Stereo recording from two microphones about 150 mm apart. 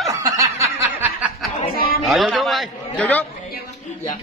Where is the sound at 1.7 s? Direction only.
90° left.